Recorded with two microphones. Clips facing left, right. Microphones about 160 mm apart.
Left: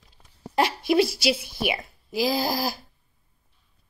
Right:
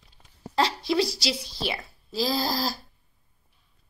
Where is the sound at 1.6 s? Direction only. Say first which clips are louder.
Left 4 dB; 15° left (ahead or behind).